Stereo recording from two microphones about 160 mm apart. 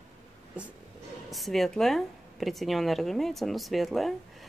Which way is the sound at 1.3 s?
Centre (ahead or behind).